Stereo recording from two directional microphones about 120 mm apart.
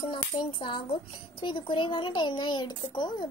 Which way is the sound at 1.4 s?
45° left (ahead or behind).